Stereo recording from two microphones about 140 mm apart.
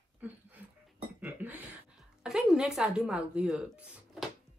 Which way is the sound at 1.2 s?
15° right (ahead or behind).